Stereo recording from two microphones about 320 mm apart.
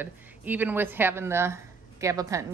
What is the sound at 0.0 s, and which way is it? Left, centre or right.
Speech, centre.